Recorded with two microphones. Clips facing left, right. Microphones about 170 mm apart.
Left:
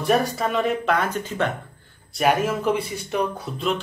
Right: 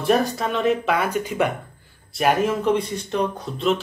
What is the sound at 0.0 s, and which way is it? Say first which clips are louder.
Speech: right 1 dB; centre (ahead or behind).